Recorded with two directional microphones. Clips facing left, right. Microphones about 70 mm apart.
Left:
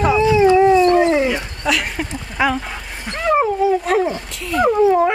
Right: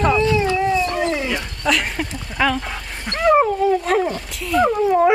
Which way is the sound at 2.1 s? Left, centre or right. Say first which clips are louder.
Left 2 dB; centre.